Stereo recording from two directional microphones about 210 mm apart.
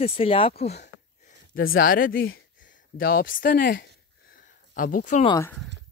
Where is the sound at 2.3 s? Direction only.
60° left (ahead or behind).